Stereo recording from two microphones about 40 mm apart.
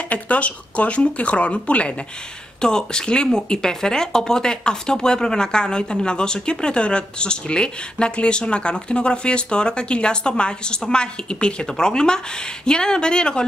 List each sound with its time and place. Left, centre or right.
0.1 s speech: left
2.6 s speech: centre